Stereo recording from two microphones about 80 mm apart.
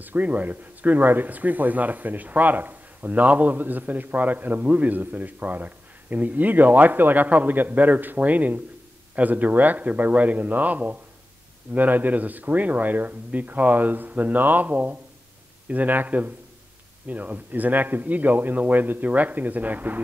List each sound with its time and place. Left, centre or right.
0.0 s speech: right